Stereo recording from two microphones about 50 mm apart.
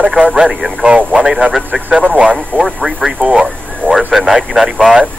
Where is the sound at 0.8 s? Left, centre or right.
Right.